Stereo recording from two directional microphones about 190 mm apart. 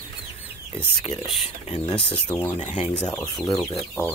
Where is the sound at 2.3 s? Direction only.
15° left (ahead or behind).